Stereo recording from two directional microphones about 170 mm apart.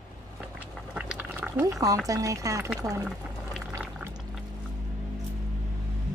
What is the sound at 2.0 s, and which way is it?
Speech, 20° right (ahead or behind).